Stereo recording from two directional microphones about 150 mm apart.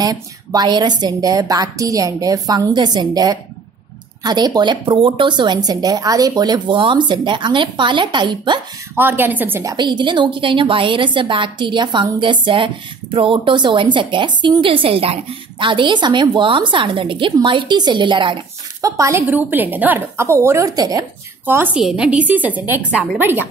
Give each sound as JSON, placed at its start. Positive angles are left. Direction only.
{"t": 0.0, "sound": "a woman's voice", "side_deg": -25}
{"t": 8.9, "sound": "a woman's voice", "side_deg": -15}
{"t": 9.8, "sound": "a woman's voice", "side_deg": -30}
{"t": 18.8, "sound": "a woman's voice", "side_deg": -20}
{"t": 21.5, "sound": "a woman's voice", "side_deg": -15}